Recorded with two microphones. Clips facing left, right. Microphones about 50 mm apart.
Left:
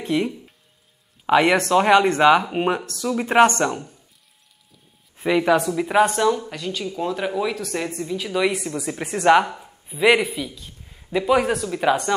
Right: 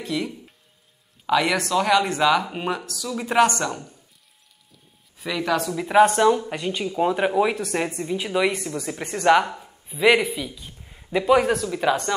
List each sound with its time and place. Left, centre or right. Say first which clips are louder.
0.0 s speech: left 5 dB; left
5.1 s speech: left 6 dB; left
5.7 s speech: right 1 dB; centre
6.1 s speech: right 2 dB; centre
8.3 s speech: left 1 dB; centre
10.5 s speech: even; centre